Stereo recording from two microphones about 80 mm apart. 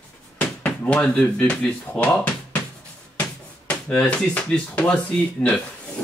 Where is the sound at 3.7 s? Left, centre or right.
Centre.